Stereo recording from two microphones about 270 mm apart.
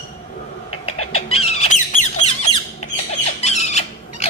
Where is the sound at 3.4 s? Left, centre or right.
Left.